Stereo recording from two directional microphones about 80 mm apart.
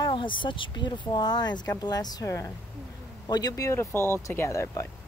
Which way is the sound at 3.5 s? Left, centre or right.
Left.